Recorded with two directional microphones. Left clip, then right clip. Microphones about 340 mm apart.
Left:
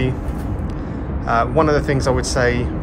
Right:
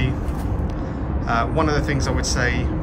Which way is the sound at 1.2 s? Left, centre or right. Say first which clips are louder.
Left 5 dB; centre.